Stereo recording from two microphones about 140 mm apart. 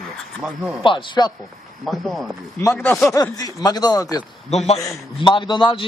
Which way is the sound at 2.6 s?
20° left (ahead or behind).